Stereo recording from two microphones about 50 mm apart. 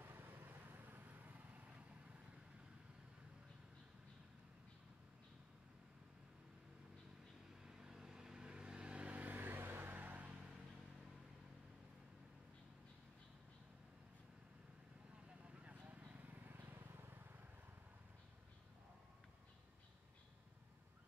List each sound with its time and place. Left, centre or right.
0.0 s vehicle: right
7.6 s vehicle: centre; by 10.5 s right
15.2 s vehicle: right